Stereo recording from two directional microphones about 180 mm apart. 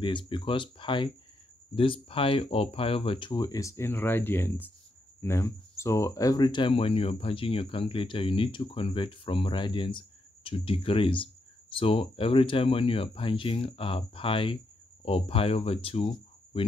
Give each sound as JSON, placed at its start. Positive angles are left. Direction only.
{"t": 0.0, "sound": "speech", "side_deg": 25}